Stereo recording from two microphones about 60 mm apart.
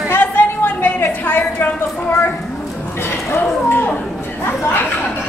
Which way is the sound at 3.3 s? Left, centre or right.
Left.